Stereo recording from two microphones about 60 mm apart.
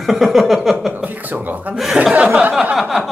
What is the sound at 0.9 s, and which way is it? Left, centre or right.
Speech, right.